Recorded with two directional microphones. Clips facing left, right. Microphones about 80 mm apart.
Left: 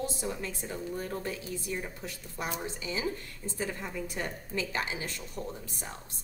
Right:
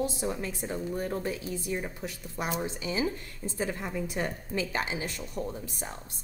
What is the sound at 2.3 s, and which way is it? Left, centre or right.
Speech, centre.